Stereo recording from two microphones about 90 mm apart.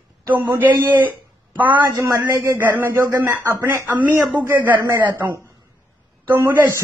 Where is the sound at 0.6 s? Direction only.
20° right (ahead or behind).